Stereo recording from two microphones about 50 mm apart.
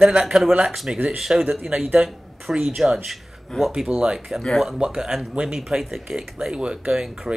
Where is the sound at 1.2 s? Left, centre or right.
Centre.